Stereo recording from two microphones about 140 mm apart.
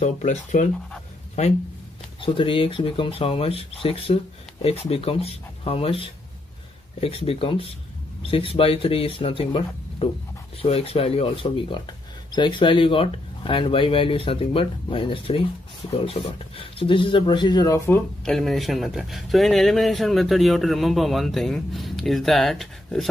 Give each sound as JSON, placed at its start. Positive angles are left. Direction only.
{"t": 0.0, "sound": "speech", "side_deg": 55}
{"t": 2.1, "sound": "speech", "side_deg": 40}
{"t": 18.2, "sound": "speech", "side_deg": 5}